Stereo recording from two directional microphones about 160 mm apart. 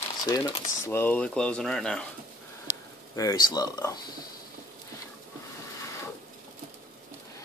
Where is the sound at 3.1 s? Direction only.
20° left (ahead or behind).